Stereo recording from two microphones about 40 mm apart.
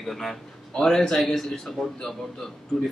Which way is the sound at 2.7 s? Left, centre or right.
Centre.